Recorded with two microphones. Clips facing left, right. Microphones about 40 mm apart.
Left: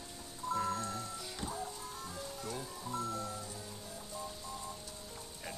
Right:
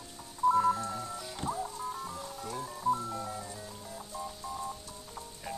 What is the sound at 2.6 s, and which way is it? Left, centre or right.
Music, right.